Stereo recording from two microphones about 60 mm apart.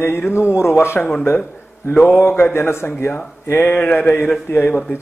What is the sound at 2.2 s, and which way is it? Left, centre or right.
A man's voice, left.